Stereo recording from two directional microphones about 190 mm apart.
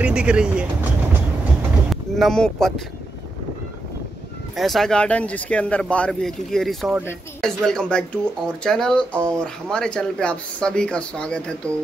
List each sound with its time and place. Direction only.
0.0 s speech: 5° right (ahead or behind)
1.9 s a sound: centre (ahead or behind)
4.6 s speech: centre (ahead or behind)